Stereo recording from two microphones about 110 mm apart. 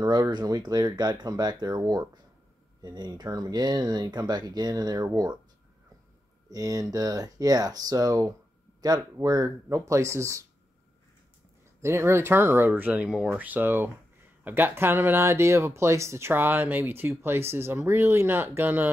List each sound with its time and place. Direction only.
0.0 s speech: 40° right (ahead or behind)
6.5 s speech: 35° right (ahead or behind)
11.8 s speech: 25° right (ahead or behind)